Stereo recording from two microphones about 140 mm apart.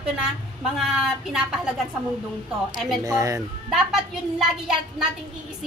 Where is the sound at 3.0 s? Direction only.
20° right (ahead or behind).